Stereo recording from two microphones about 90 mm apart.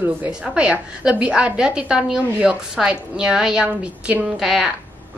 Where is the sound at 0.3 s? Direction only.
10° right (ahead or behind).